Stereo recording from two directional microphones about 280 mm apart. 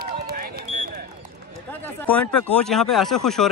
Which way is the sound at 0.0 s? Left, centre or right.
Right.